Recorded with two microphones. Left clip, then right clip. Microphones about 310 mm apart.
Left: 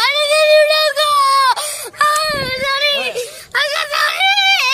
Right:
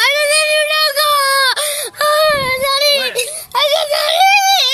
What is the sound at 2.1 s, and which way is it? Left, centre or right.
Child singing, left.